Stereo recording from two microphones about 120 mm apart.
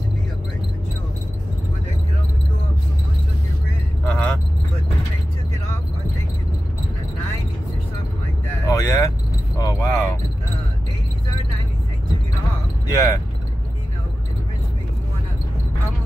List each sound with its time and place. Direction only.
4.0 s vehicle: 10° left (ahead or behind)
8.6 s vehicle: 25° left (ahead or behind)
9.6 s cricket: 25° left (ahead or behind)
12.8 s a sound: 25° left (ahead or behind)